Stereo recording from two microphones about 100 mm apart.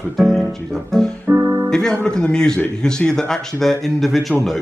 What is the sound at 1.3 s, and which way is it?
Music, 25° right (ahead or behind).